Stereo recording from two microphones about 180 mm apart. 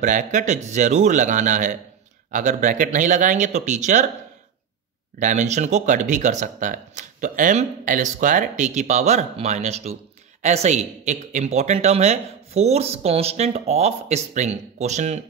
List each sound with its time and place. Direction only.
0.0 s a man's voice: 45° right (ahead or behind)
5.2 s a woman's voice: 40° right (ahead or behind)